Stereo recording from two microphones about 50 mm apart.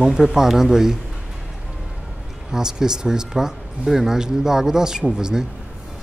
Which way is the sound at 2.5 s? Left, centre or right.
Centre.